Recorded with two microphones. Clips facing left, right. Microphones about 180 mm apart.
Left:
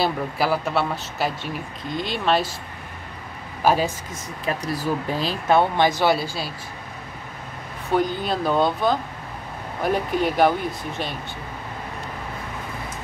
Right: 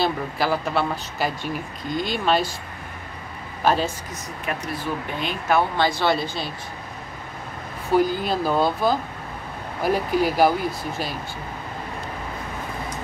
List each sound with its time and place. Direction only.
0.0 s speech: 5° left (ahead or behind)
3.6 s speech: 10° left (ahead or behind)
4.5 s speech: 35° left (ahead or behind); by 6.2 s 15° left (ahead or behind)
7.9 s speech: 5° right (ahead or behind)